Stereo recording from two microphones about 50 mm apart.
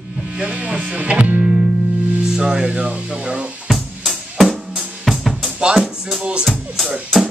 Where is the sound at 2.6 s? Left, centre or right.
Right.